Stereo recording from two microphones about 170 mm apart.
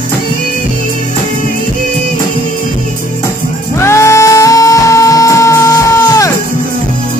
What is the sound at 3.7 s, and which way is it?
Music, 15° left (ahead or behind).